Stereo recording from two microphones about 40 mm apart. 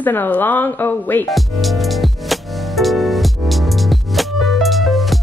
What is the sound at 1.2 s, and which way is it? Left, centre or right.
Music, centre.